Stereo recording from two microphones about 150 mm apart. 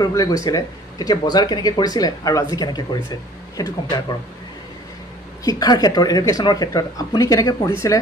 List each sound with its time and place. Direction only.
0.0 s speech: 25° left (ahead or behind)
5.4 s speech: 25° left (ahead or behind)